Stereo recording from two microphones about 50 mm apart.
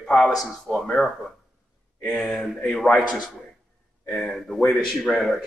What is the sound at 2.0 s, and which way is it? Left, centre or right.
A man's voice, centre.